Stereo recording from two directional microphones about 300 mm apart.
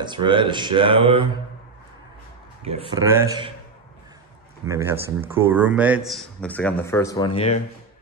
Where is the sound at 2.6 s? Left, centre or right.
Centre.